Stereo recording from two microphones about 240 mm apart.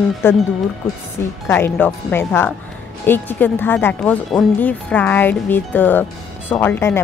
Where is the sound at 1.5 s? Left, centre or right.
Centre.